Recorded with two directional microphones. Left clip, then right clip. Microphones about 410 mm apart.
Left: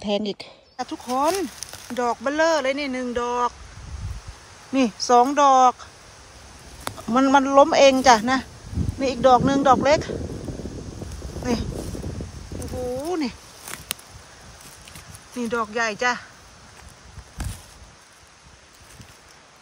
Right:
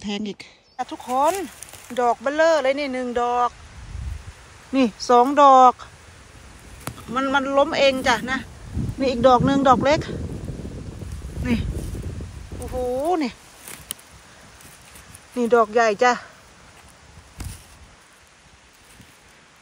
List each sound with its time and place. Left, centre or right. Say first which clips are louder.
0.0 s speech: left 5 dB; centre
4.7 s speech: right 1 dB; centre
13.0 s speech: right 5 dB; centre
15.3 s speech: right 8 dB; centre